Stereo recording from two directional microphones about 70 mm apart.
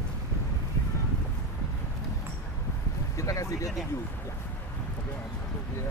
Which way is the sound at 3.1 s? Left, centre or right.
Left.